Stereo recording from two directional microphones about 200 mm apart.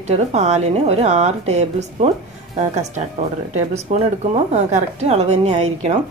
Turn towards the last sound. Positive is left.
turn(degrees=-35)  # may be behind; listen again after turning